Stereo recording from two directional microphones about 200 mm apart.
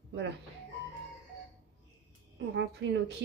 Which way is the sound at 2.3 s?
65° right (ahead or behind).